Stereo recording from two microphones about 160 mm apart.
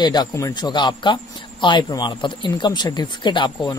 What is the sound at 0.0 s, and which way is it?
Speech, 25° left (ahead or behind).